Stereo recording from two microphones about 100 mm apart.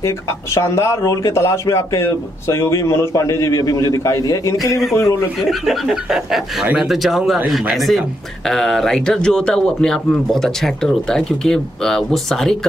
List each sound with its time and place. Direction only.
0.6 s speech: 30° left (ahead or behind)
5.5 s speech: 5° right (ahead or behind)